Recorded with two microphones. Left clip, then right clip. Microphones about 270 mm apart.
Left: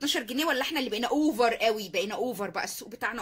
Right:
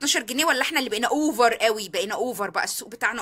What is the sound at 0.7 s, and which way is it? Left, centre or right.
Speech, right.